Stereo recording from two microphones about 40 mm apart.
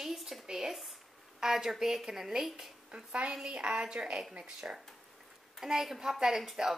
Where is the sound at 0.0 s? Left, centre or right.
Centre.